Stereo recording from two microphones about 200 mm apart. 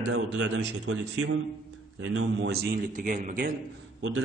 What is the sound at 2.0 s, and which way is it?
Speech, 90° right.